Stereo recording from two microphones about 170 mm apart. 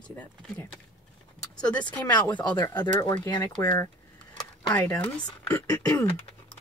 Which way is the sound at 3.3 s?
20° left (ahead or behind).